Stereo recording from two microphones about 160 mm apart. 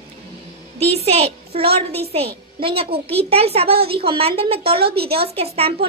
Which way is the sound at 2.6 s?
35° right (ahead or behind).